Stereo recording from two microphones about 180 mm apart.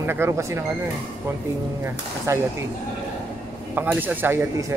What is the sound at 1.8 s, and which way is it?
Speech, 15° right (ahead or behind).